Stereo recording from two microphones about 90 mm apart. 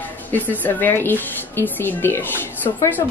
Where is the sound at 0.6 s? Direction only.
20° left (ahead or behind).